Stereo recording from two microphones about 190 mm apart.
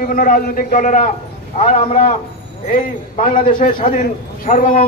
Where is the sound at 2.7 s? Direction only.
45° left (ahead or behind).